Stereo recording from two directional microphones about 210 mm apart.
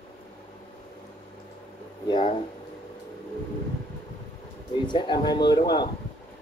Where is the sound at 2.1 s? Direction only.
25° left (ahead or behind).